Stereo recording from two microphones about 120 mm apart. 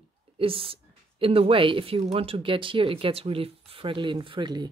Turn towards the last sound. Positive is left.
turn(degrees=-40)  # may be behind; listen again after turning